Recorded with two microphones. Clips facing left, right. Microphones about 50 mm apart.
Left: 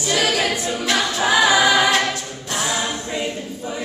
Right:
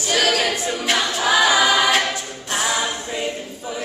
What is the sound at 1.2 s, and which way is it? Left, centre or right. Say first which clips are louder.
A capella: left 1 dB; centre.